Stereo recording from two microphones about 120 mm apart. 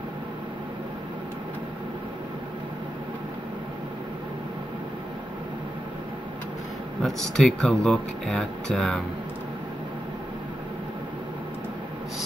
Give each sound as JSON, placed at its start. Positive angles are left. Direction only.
{"t": 7.0, "sound": "speech", "side_deg": 5}